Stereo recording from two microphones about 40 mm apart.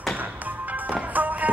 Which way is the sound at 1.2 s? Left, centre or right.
Right.